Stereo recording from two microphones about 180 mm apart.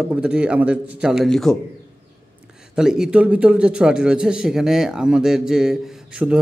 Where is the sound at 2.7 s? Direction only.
5° right (ahead or behind).